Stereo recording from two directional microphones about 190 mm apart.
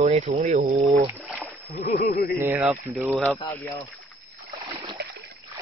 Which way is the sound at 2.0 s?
50° left (ahead or behind).